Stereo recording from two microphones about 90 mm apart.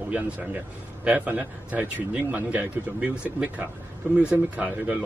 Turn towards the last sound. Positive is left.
turn(degrees=-15)  # may be behind; listen again after turning